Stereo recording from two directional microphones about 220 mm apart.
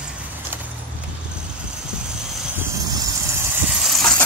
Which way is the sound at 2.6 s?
15° right (ahead or behind).